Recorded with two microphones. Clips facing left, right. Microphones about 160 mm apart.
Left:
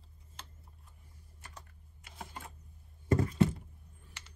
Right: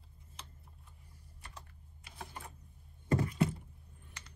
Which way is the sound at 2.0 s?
20° left (ahead or behind).